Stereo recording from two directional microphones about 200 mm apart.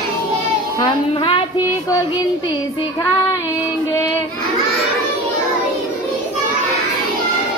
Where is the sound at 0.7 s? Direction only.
25° left (ahead or behind).